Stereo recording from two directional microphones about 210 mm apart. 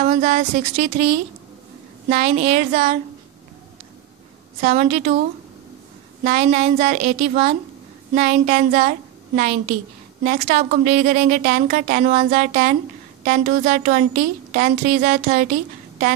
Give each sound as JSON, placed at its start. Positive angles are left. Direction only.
{"t": 0.0, "sound": "a woman's voice", "side_deg": -35}
{"t": 4.6, "sound": "a woman's voice", "side_deg": -35}
{"t": 6.2, "sound": "a woman's voice", "side_deg": -35}